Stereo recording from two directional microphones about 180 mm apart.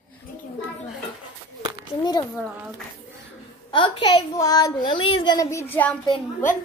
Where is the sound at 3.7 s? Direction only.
30° left (ahead or behind); by 6.0 s 10° left (ahead or behind).